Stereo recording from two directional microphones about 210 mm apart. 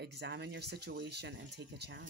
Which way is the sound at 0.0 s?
50° right (ahead or behind).